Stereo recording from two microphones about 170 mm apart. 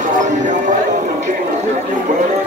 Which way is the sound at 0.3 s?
45° right (ahead or behind).